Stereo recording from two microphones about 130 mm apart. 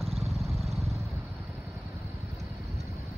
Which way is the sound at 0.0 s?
Centre (ahead or behind).